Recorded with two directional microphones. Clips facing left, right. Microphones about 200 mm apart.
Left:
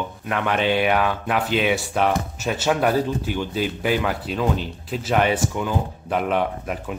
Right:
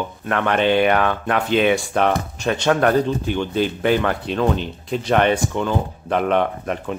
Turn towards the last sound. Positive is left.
turn(degrees=5)  # may be behind; listen again after turning